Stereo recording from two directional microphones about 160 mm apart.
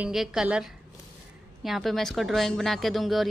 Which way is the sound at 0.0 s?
5° right (ahead or behind).